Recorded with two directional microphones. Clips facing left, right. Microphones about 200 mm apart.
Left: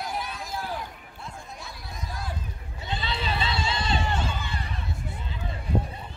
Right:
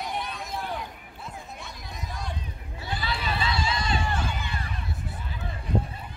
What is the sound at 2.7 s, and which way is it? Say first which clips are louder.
Run: even; 25° left (ahead or behind).